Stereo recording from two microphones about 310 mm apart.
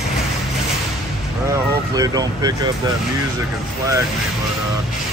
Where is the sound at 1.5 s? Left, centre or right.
Centre.